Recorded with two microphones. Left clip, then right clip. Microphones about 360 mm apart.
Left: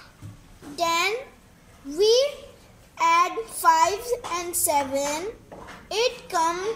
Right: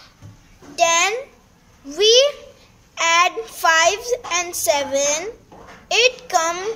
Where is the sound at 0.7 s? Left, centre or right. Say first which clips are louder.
Right 7 dB; right.